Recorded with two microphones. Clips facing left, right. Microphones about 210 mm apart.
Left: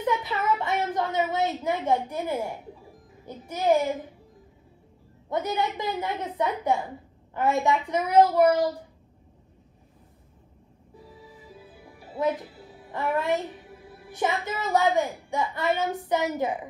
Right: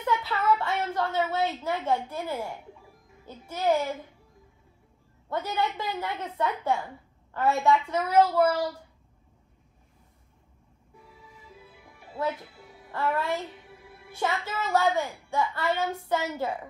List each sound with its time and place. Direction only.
0.0 s a woman's voice: 20° left (ahead or behind)
5.3 s a woman's voice: 15° left (ahead or behind)
11.6 s music: 35° left (ahead or behind)
12.9 s a woman's voice: 15° left (ahead or behind)